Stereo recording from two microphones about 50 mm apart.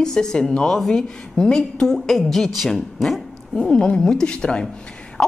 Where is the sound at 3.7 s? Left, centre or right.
Centre.